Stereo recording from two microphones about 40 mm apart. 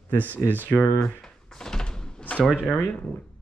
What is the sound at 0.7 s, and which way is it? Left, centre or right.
Door, centre.